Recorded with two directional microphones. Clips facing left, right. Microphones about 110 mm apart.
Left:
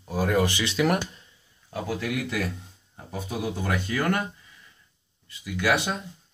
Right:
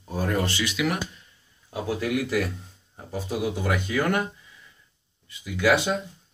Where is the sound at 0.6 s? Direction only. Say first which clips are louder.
Left 2 dB; 30° left (ahead or behind).